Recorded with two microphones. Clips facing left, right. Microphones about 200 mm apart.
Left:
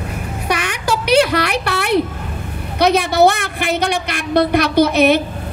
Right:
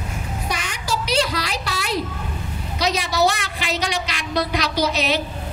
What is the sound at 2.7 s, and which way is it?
A woman's voice, 60° left (ahead or behind).